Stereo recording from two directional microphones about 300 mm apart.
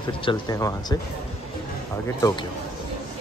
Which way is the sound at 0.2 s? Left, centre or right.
Centre.